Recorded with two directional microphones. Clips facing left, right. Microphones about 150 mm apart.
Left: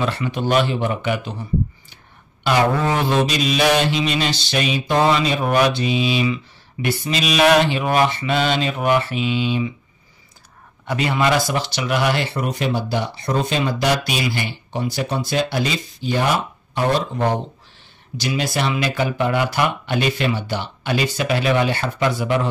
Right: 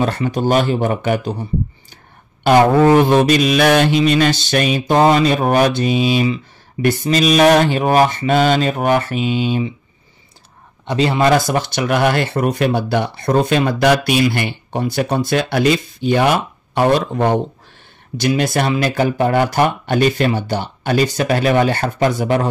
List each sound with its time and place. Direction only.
0.0 s speech: 40° right (ahead or behind)
2.4 s speech: 45° right (ahead or behind)
10.9 s speech: 30° right (ahead or behind)
11.1 s speech: 45° right (ahead or behind)